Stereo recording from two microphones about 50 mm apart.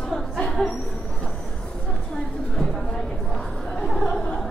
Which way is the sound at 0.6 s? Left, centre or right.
Centre.